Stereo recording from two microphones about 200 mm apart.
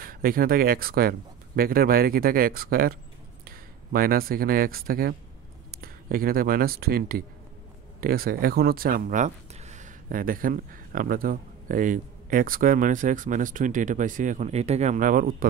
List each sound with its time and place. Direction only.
0.0 s speech: 45° right (ahead or behind)